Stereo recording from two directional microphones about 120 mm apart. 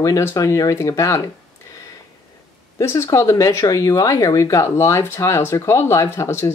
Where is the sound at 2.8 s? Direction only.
25° left (ahead or behind).